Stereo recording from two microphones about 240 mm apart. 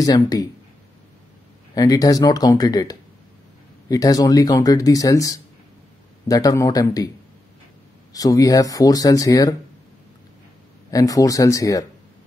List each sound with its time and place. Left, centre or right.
0.0 s speech: centre
1.8 s speech: centre
8.1 s speech: centre
10.9 s speech: centre